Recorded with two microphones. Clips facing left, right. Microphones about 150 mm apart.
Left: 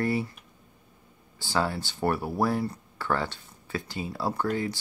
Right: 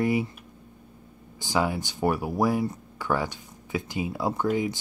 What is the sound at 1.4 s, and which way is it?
Speech, 15° right (ahead or behind).